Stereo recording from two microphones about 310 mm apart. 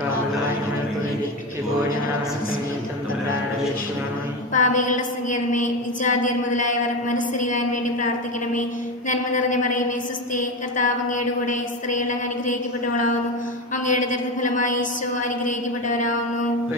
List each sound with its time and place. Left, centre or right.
4.6 s a woman's voice: left
9.1 s a woman's voice: left
14.4 s a woman's voice: left